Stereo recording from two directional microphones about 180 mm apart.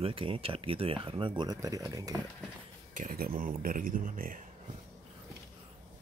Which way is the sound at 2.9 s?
50° right (ahead or behind).